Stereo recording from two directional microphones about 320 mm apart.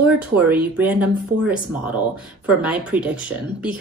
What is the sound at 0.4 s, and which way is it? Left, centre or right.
Speech, centre.